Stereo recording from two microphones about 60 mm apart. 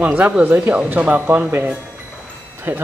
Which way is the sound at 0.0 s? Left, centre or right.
Right.